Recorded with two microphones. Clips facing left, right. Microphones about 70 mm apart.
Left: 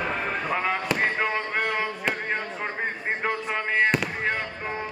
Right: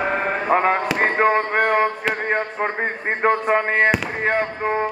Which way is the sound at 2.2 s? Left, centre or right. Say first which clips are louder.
Right 7 dB; right.